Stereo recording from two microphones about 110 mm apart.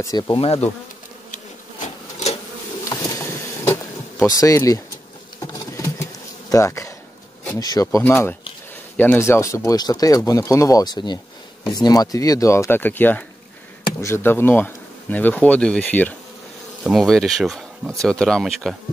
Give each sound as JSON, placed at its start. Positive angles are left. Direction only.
{"t": 0.0, "sound": "speech", "side_deg": 35}
{"t": 0.4, "sound": "bee", "side_deg": 65}
{"t": 2.9, "sound": "a sound", "side_deg": 25}
{"t": 5.4, "sound": "patter", "side_deg": 30}
{"t": 6.5, "sound": "speech", "side_deg": 30}
{"t": 8.0, "sound": "speech", "side_deg": 20}
{"t": 16.8, "sound": "speech", "side_deg": 0}